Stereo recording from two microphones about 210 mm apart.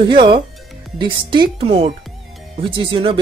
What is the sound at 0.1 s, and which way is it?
Speech, 25° right (ahead or behind).